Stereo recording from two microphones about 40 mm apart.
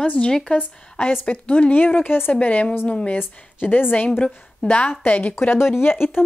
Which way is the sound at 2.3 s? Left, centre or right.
Left.